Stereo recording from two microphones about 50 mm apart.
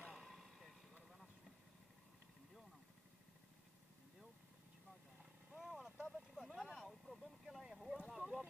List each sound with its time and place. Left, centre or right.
0.1 s vehicle: centre
5.6 s vehicle: centre
6.9 s a sound: centre